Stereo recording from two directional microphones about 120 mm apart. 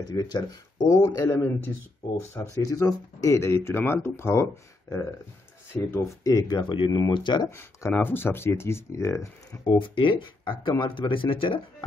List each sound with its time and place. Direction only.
0.1 s speech: 35° left (ahead or behind)
1.0 s speech: 20° left (ahead or behind)
2.5 s speech: 30° left (ahead or behind)
7.4 s speech: 20° left (ahead or behind)
9.7 s speech: 45° left (ahead or behind)